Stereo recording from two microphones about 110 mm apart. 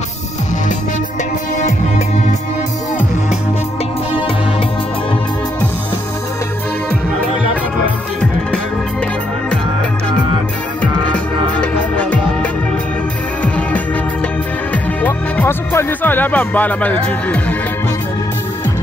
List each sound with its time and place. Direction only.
10.8 s music: 15° left (ahead or behind)
13.4 s music: 10° left (ahead or behind)